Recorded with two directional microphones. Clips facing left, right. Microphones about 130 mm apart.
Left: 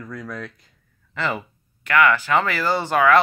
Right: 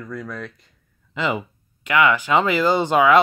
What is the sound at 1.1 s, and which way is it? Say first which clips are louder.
Speech: right 2 dB; 15° right (ahead or behind).